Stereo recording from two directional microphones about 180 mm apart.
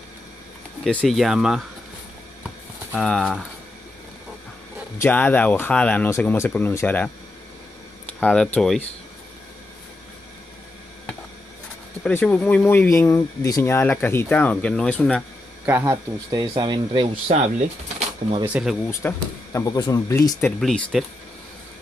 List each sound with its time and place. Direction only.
0.8 s speech: centre (ahead or behind)
2.9 s speech: 5° left (ahead or behind)
4.9 s speech: 10° left (ahead or behind)
8.2 s speech: 10° left (ahead or behind)
12.0 s speech: 10° left (ahead or behind)
15.6 s speech: 10° right (ahead or behind); by 17.4 s 30° right (ahead or behind)
17.4 s speech: 40° right (ahead or behind)
18.4 s speech: 5° right (ahead or behind)
18.9 s speech: 15° left (ahead or behind)